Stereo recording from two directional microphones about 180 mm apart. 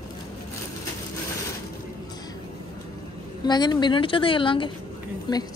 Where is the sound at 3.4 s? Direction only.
25° left (ahead or behind).